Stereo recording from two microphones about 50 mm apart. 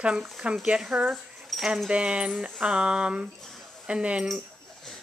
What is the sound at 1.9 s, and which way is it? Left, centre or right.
Speech, right.